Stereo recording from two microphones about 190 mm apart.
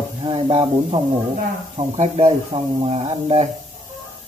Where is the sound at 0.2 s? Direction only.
30° right (ahead or behind).